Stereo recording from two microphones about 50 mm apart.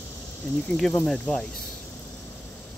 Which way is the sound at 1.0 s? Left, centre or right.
Centre.